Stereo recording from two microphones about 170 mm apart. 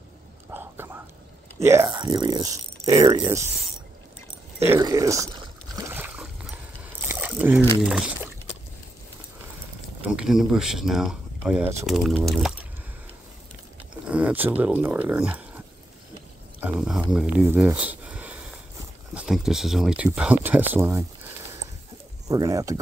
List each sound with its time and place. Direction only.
0.5 s whispering: 10° right (ahead or behind)
1.6 s speech: 15° right (ahead or behind)
4.6 s a sound: 20° right (ahead or behind)
7.8 s speech: 5° right (ahead or behind)
10.0 s speech: 5° right (ahead or behind)
14.0 s a sound: 10° right (ahead or behind)
14.6 s speech: 10° right (ahead or behind)
16.6 s speech: 5° right (ahead or behind)
17.5 s a sound: 10° right (ahead or behind)
19.1 s speech: 5° right (ahead or behind)
22.3 s speech: 20° right (ahead or behind)